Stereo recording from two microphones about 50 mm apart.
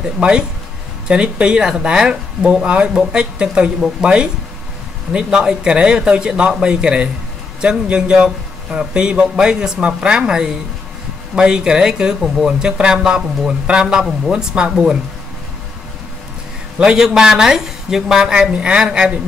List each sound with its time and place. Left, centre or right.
0.0 s a woman's voice: centre
16.7 s a woman's voice: centre